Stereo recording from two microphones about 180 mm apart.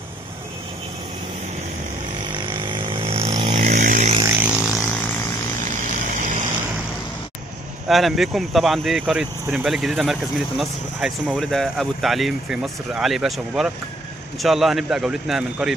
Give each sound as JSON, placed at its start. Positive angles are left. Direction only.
{"t": 2.3, "sound": "vehicle", "side_deg": -25}
{"t": 4.4, "sound": "a sound", "side_deg": -5}
{"t": 6.1, "sound": "vehicle", "side_deg": -45}
{"t": 7.9, "sound": "speech", "side_deg": 0}